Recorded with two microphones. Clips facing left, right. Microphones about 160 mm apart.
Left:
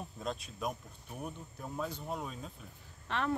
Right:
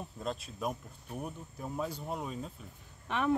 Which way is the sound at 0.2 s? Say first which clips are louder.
Right 2 dB; centre (ahead or behind).